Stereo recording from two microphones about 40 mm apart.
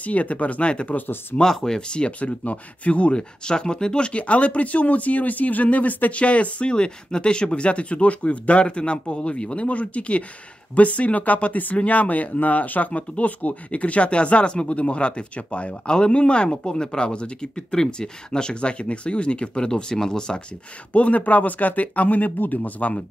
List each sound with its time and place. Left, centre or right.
0.0 s speech: left
1.4 s speech: centre
1.9 s speech: left
3.2 s speech: centre; by 6.2 s left
6.2 s speech: left
20.9 s speech: left